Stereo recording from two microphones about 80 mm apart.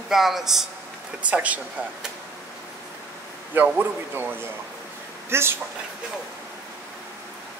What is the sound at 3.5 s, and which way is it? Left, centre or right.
Speech, right.